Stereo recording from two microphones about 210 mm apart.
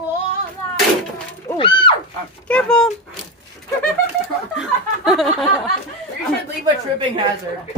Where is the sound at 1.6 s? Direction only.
25° left (ahead or behind).